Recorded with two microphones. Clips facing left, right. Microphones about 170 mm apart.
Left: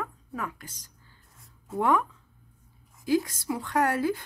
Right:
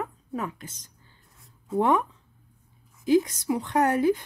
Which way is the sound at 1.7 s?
20° right (ahead or behind).